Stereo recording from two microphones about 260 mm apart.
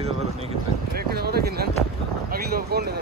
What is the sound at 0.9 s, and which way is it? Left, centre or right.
Speech, right.